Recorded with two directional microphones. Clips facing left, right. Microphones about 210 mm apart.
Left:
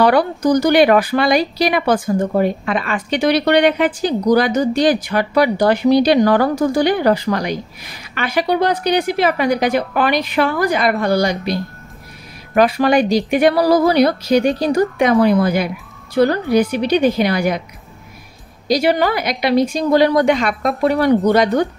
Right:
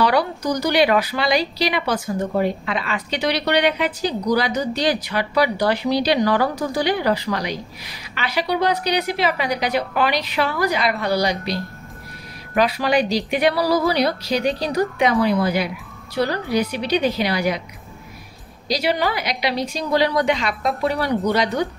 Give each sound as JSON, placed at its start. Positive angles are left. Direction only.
{"t": 0.0, "sound": "speech", "side_deg": 50}
{"t": 18.7, "sound": "speech", "side_deg": 50}